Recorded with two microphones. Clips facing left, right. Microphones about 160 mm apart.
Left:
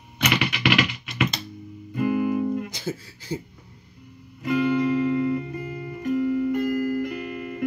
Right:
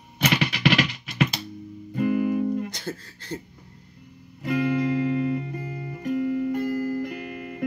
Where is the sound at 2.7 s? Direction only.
5° left (ahead or behind).